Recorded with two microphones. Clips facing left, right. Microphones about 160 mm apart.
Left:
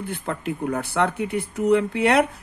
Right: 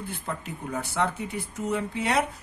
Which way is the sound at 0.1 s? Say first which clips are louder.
Left 7 dB; 65° left (ahead or behind).